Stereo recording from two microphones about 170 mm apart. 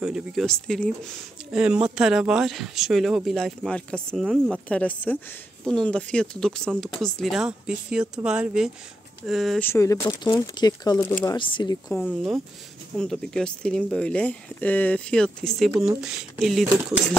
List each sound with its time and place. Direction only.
0.0 s speech: 5° right (ahead or behind)
9.6 s speech: 15° left (ahead or behind)
12.0 s speech: 5° right (ahead or behind)